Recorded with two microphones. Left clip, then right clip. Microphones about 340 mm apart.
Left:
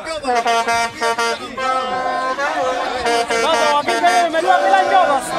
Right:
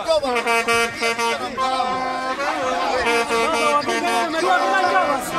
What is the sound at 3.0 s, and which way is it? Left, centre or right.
Music, left.